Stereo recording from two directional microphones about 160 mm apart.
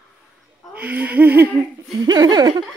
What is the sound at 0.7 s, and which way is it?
Speech, 10° right (ahead or behind).